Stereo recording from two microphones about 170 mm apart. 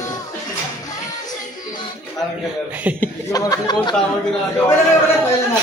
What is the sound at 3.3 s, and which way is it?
Speech, 20° left (ahead or behind).